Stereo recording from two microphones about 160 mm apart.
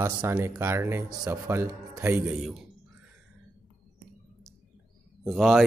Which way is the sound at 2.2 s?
5° right (ahead or behind).